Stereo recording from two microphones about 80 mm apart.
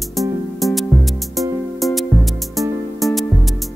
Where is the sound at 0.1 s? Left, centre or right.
Centre.